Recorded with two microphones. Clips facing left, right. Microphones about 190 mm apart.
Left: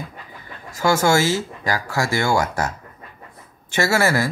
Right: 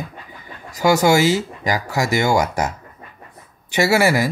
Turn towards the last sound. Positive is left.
turn(degrees=-15)  # may be behind; listen again after turning